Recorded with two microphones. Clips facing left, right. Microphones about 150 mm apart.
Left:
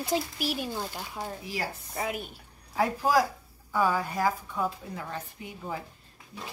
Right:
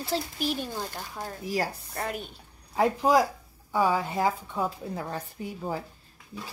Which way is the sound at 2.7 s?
25° right (ahead or behind).